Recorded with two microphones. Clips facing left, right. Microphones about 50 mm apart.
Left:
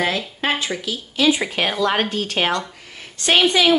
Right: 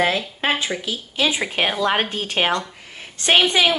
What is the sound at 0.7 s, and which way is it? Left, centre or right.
A woman's voice, centre.